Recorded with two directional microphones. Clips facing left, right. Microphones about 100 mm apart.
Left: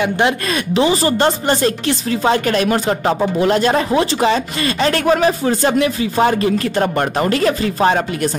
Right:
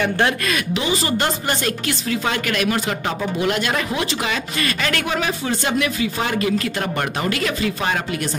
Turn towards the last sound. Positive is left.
turn(degrees=35)  # may be behind; listen again after turning